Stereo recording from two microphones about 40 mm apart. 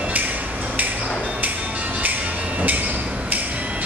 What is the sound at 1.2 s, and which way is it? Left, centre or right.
Music, right.